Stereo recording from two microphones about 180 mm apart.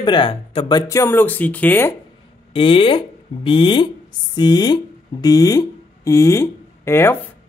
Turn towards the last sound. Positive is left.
turn(degrees=10)  # may be behind; listen again after turning